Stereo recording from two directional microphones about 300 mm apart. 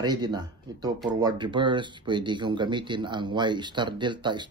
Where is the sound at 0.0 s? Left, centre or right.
Centre.